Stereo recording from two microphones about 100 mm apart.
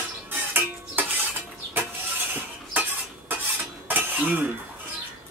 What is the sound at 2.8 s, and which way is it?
Cutlery, 20° right (ahead or behind).